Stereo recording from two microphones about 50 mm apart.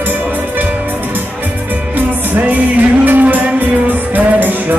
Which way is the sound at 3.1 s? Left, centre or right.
Right.